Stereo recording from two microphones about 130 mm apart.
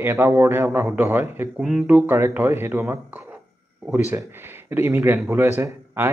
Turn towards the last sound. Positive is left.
turn(degrees=-20)  # may be behind; listen again after turning